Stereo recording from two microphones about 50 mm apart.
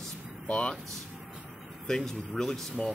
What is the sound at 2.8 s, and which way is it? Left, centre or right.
Speech, centre.